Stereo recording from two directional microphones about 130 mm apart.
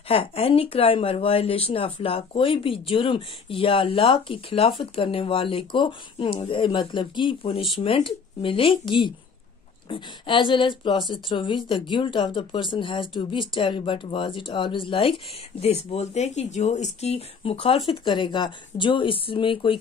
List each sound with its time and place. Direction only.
0.1 s speech: 45° left (ahead or behind)